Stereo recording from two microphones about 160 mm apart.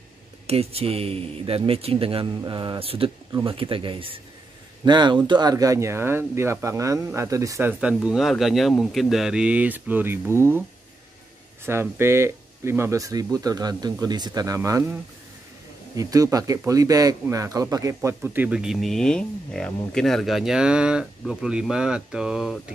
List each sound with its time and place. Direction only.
0.5 s speech: 40° right (ahead or behind); by 7.7 s 20° right (ahead or behind)
7.8 s speech: 5° right (ahead or behind)
11.6 s speech: 15° right (ahead or behind)
16.0 s speech: 20° right (ahead or behind); by 22.6 s centre (ahead or behind)